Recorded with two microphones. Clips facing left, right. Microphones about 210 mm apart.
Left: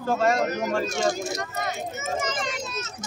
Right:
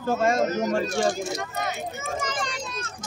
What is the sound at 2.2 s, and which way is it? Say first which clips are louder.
Speech: even; 25° left (ahead or behind).